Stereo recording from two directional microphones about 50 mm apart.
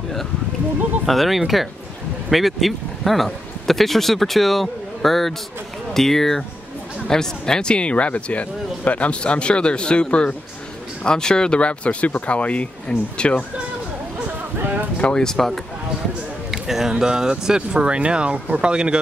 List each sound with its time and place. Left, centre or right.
1.0 s speech: centre; by 13.4 s left
15.0 s speech: centre
16.4 s a sound: centre
16.9 s speech: centre